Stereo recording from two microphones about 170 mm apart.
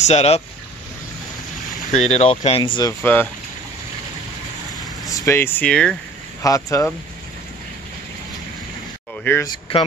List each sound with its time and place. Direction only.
0.0 s speech: 40° left (ahead or behind)
1.9 s speech: 40° left (ahead or behind)
3.0 s speech: 10° left (ahead or behind)
5.1 s speech: 15° left (ahead or behind)
6.4 s speech: 20° left (ahead or behind)
9.2 s speech: 15° left (ahead or behind)
9.5 s speech: 30° left (ahead or behind)